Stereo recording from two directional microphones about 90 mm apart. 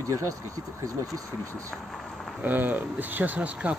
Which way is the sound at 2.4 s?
20° right (ahead or behind).